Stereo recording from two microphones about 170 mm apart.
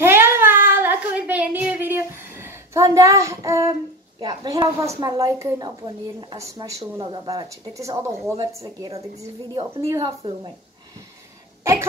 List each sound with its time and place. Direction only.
0.0 s a sound: 15° right (ahead or behind)
4.2 s a woman's voice: 25° right (ahead or behind)
6.8 s speech: 30° right (ahead or behind)
7.2 s a woman's voice: 20° right (ahead or behind)
9.5 s a woman's voice: 30° right (ahead or behind)